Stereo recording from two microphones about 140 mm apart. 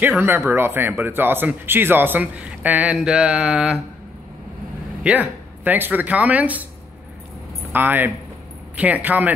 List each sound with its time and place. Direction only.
0.2 s speech: 15° right (ahead or behind)
5.0 s speech: 10° right (ahead or behind)
7.7 s speech: 15° right (ahead or behind)